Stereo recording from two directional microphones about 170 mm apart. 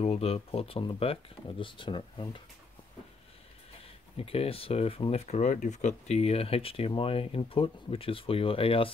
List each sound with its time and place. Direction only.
0.0 s speech: 35° left (ahead or behind)
4.2 s speech: 35° left (ahead or behind)